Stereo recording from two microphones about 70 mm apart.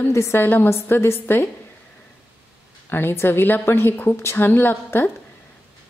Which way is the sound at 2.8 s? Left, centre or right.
Left.